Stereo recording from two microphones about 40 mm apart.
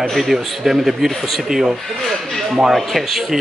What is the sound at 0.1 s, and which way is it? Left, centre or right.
A man's voice, centre.